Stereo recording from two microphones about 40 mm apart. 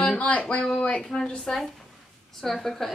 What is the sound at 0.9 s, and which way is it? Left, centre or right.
Speech, centre.